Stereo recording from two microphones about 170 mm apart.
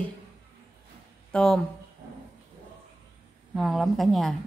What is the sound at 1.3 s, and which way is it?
Speech, 5° left (ahead or behind).